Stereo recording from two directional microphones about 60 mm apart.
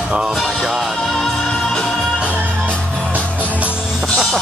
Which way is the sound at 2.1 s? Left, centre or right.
Centre.